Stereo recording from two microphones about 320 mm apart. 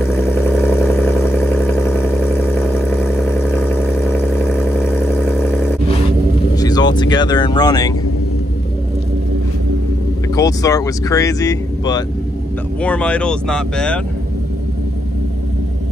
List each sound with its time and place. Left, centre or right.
0.0 s vehicle: centre
6.5 s speech: centre
10.3 s speech: centre